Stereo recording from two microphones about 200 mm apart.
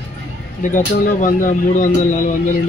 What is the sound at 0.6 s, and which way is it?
Speech, 40° left (ahead or behind).